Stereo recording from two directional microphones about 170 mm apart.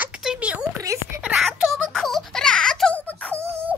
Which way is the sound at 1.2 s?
5° right (ahead or behind).